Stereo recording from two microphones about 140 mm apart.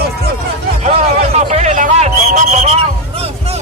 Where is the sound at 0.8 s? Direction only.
50° right (ahead or behind).